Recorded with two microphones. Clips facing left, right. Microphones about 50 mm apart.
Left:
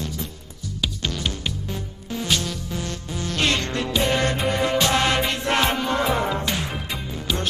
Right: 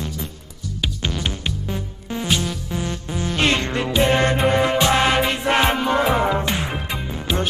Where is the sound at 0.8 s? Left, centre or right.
Centre.